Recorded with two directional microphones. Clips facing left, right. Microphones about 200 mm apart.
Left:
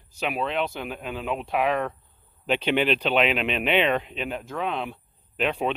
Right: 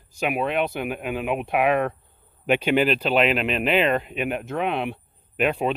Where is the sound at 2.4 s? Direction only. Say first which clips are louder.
Right 3 dB; 10° right (ahead or behind).